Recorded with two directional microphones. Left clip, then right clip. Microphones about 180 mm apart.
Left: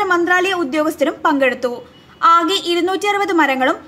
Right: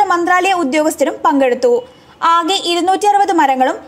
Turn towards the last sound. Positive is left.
turn(degrees=-35)  # may be behind; listen again after turning